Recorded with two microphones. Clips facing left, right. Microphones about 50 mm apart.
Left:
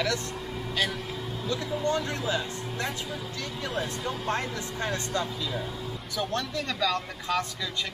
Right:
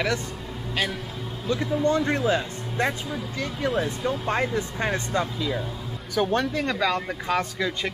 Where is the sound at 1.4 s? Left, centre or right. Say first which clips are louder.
Right 6 dB; right.